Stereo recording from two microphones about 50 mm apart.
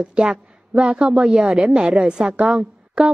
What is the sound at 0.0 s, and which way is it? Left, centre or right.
A woman's voice, centre.